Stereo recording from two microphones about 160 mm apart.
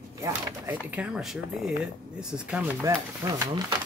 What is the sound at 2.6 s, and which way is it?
Speech, 15° right (ahead or behind).